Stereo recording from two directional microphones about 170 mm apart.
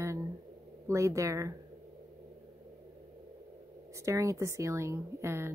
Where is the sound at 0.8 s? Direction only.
15° right (ahead or behind).